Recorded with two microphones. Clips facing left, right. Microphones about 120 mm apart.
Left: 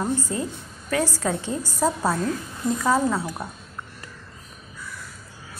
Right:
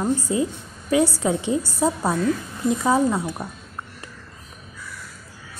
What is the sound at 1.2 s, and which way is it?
Speech, 15° right (ahead or behind).